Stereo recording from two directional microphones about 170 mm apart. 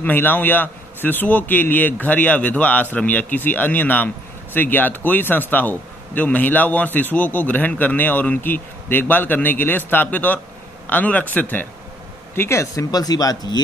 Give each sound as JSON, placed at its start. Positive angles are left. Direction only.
{"t": 0.0, "sound": "a man's voice", "side_deg": 10}